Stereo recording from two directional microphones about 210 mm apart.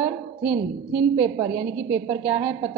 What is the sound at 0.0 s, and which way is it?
A woman's voice, 5° right (ahead or behind).